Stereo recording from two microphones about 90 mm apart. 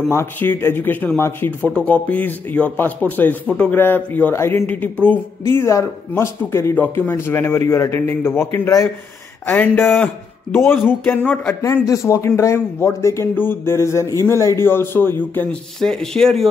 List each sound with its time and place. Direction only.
0.1 s speech: 25° left (ahead or behind)
3.4 s speech: 10° left (ahead or behind)
3.7 s speech: 25° left (ahead or behind)
4.6 s speech: 20° left (ahead or behind)
11.1 s speech: 10° left (ahead or behind)
11.8 s speech: 35° left (ahead or behind)
15.8 s speech: 5° left (ahead or behind)